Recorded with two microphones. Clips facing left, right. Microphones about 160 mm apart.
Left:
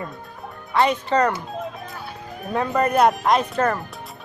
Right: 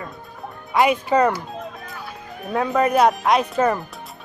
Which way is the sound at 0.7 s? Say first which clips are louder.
Right 2 dB; 10° right (ahead or behind).